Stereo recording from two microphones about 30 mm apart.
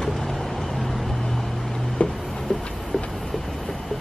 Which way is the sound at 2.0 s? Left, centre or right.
Left.